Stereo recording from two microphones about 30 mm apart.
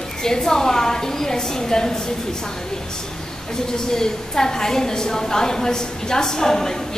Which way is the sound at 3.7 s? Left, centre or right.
Left.